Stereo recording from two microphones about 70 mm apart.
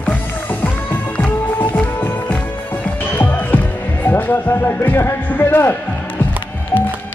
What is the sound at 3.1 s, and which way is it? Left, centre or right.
Music, left.